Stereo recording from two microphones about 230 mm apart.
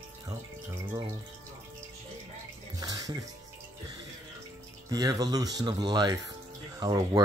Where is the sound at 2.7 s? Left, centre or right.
Centre.